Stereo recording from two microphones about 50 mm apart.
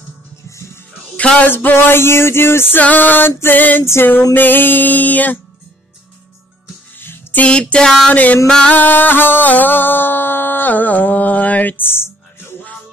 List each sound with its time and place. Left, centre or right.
0.5 s music: left
1.4 s male singing: left
2.8 s music: left
3.3 s male singing: left
3.5 s music: left
7.0 s music: left
7.4 s a sound: centre
8.1 s music: left
8.5 s music: centre
8.7 s music: left